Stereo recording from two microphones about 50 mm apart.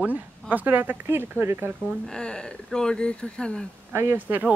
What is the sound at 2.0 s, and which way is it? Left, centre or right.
Speech, centre.